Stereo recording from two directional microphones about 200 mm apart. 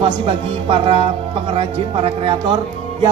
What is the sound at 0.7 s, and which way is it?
Speech, 30° right (ahead or behind).